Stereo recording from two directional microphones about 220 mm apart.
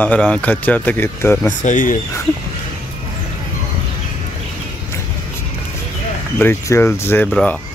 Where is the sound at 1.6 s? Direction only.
35° left (ahead or behind).